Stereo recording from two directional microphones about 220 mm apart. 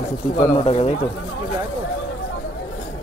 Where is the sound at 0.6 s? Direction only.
25° left (ahead or behind).